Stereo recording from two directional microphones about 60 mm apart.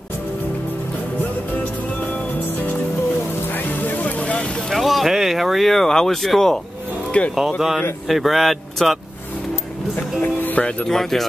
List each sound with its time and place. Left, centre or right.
1.5 s music: left
4.6 s speech: centre
7.1 s speech: left
7.3 s speech: centre
10.2 s speech: left
10.9 s speech: centre